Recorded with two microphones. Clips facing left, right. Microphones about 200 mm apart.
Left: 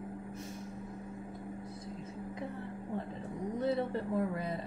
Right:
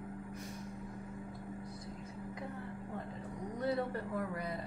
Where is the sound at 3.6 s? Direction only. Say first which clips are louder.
Left 2 dB; 25° left (ahead or behind).